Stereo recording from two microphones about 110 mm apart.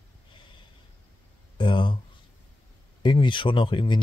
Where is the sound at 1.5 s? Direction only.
50° left (ahead or behind).